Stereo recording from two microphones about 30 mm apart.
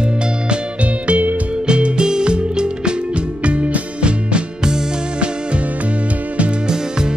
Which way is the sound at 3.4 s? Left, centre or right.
Right.